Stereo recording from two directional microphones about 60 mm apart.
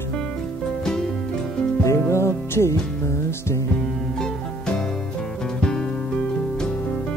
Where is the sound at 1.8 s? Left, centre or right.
Left.